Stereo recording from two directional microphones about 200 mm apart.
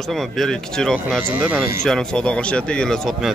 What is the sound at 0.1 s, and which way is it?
Speech, centre (ahead or behind).